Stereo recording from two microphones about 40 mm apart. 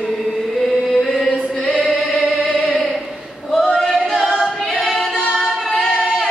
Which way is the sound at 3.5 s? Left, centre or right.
Centre.